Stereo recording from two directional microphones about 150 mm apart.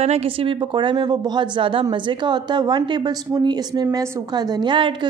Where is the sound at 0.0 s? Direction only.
45° right (ahead or behind).